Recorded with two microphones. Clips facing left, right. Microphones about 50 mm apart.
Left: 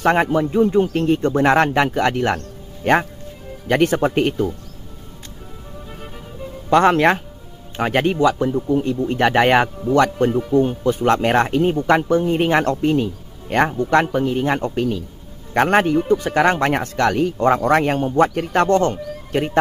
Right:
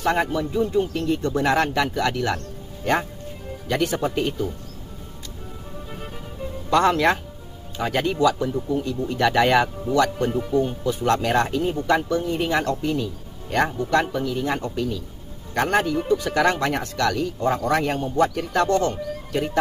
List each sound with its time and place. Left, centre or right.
0.0 s speech: left
6.7 s speech: left
8.6 s speech: left
9.0 s speech: left